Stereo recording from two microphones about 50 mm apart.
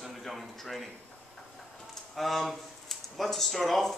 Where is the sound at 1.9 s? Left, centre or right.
Centre.